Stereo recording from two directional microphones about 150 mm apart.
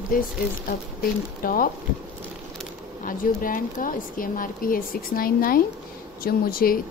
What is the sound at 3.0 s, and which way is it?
Speech, 65° left (ahead or behind).